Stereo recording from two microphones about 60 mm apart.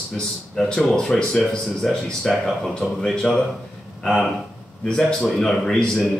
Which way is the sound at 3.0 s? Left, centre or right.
Centre.